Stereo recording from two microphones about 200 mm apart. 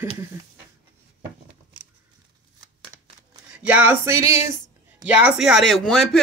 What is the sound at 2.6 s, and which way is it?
Shuffling cards, 20° right (ahead or behind).